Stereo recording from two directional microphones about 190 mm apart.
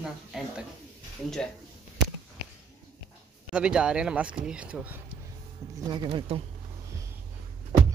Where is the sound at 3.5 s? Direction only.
5° right (ahead or behind).